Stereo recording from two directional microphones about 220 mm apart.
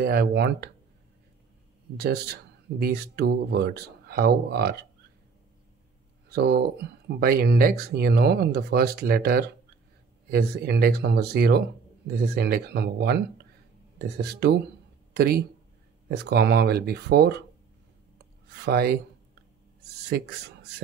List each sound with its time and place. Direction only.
0.0 s speech: 45° right (ahead or behind)
2.0 s speech: 45° right (ahead or behind)
6.2 s speech: 45° right (ahead or behind)
18.7 s speech: 45° right (ahead or behind)